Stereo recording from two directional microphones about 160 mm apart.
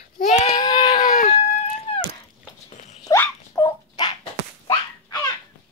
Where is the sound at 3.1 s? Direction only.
20° left (ahead or behind).